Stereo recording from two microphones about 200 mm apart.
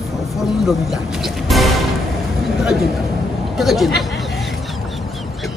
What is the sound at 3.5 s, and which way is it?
Chatter, centre (ahead or behind).